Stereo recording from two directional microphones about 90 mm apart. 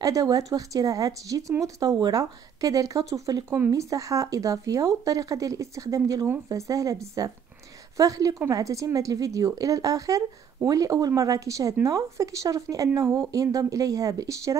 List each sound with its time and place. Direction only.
0.0 s a woman's voice: 40° right (ahead or behind)